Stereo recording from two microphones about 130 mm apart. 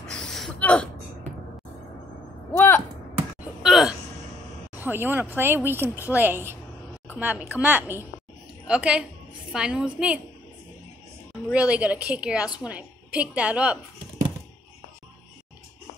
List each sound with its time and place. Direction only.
0.0 s gasp: 5° left (ahead or behind)
2.5 s a sound: 15° left (ahead or behind)
3.6 s gasp: 5° right (ahead or behind)
4.7 s a woman's voice: 15° right (ahead or behind)
11.5 s a woman's voice: 10° right (ahead or behind)